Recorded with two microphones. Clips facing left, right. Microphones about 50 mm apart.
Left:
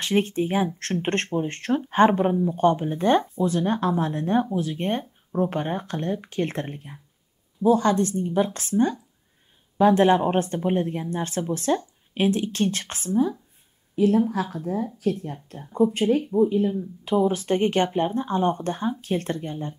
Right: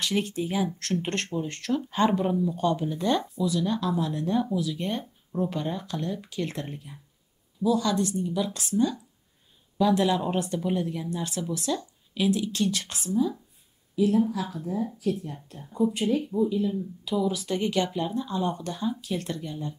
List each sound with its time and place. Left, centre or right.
0.0 s speech: left